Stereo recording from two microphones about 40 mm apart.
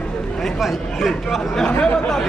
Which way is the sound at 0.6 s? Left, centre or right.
Centre.